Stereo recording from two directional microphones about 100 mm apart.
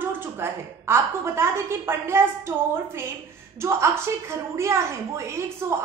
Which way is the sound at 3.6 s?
25° right (ahead or behind).